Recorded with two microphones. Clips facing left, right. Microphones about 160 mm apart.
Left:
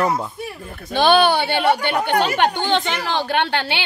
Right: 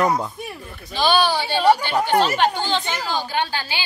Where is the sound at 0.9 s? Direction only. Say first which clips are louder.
Left 4 dB; 60° left (ahead or behind).